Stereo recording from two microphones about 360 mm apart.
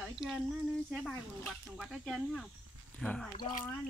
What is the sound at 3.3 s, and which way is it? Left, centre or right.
Speech, left.